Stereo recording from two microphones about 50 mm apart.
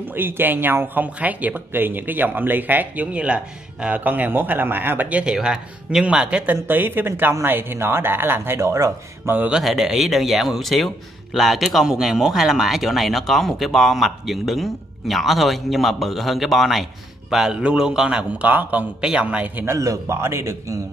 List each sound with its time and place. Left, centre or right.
0.1 s speech: right
1.7 s speech: right
3.1 s a man's voice: right
4.0 s speech: right
5.3 s speech: centre
6.5 s speech: right
9.6 s speech: centre
17.3 s a man's voice: centre
18.5 s speech: right
18.9 s speech: centre
19.2 s speech: right
19.6 s a man's voice: right